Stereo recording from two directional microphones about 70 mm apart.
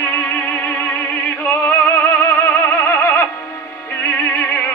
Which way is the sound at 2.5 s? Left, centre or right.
Left.